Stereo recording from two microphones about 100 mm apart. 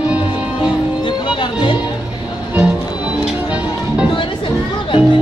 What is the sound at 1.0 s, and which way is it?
Music, 55° left (ahead or behind).